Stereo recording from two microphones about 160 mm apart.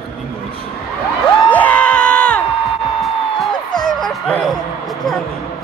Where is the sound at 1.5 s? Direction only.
10° left (ahead or behind).